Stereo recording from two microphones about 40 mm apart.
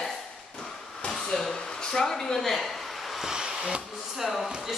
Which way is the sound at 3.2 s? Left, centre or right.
Centre.